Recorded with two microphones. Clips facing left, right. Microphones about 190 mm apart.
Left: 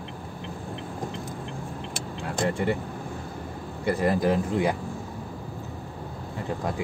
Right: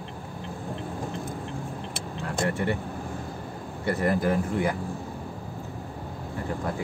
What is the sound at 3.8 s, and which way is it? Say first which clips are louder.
Speech: left 1 dB; 15° left (ahead or behind).